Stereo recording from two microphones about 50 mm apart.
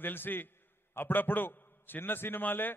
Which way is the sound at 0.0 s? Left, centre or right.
Left.